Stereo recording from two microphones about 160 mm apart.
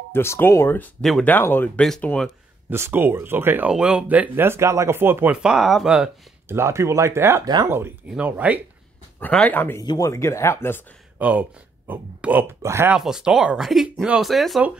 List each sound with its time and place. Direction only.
0.1 s speech: 15° left (ahead or behind)
2.7 s speech: 15° right (ahead or behind)
6.5 s speech: 15° right (ahead or behind)
9.2 s speech: 10° left (ahead or behind)
11.1 s speech: 10° right (ahead or behind)
12.9 s speech: 5° right (ahead or behind)